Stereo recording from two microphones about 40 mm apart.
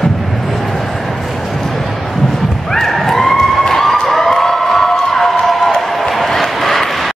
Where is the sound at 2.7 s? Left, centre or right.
Centre.